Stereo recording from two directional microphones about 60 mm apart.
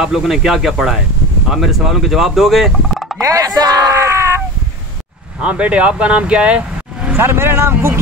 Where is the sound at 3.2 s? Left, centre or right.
Right.